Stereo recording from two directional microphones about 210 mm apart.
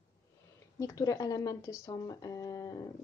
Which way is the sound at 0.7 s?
15° left (ahead or behind).